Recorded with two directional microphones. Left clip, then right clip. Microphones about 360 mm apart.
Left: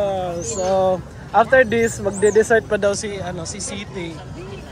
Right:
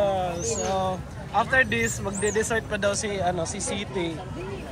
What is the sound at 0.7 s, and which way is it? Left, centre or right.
Speech, left.